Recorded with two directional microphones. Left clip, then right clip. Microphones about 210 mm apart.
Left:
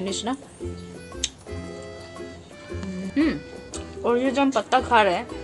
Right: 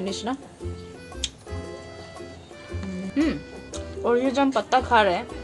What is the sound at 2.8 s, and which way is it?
Speech, 10° left (ahead or behind).